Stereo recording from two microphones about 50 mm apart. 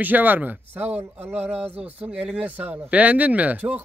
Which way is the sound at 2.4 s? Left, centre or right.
Right.